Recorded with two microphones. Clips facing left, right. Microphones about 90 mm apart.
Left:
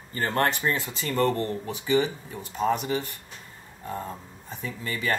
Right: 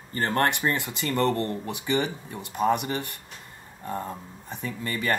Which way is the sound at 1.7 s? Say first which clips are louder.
Left 5 dB; 60° right (ahead or behind).